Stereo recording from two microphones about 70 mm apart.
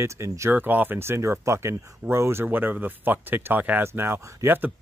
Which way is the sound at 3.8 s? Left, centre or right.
Right.